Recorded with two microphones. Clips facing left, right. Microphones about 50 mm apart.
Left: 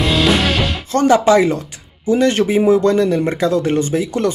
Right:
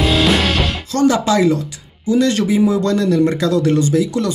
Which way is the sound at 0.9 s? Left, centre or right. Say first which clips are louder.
Left 3 dB; left.